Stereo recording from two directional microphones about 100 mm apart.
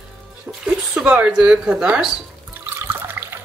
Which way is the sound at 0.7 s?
10° right (ahead or behind).